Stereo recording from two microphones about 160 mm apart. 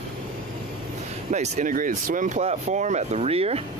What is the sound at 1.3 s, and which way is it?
Speech, 50° right (ahead or behind).